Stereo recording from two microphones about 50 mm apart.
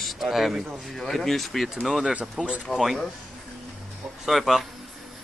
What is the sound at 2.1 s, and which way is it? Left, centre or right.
Speech, right.